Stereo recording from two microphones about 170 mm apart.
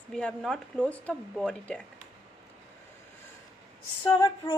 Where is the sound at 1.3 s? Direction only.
Centre (ahead or behind).